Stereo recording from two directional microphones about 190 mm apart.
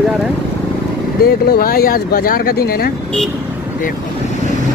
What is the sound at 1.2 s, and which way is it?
Speech, 55° left (ahead or behind).